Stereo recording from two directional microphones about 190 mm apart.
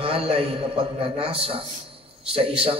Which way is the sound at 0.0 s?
30° right (ahead or behind).